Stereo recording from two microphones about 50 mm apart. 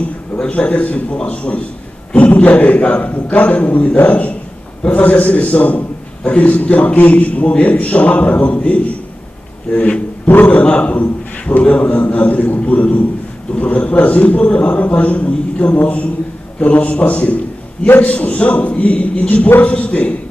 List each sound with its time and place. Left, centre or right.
0.4 s a man's voice: left
10.2 s a man's voice: left